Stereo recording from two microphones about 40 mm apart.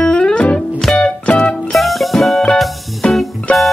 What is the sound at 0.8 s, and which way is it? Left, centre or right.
Music, centre.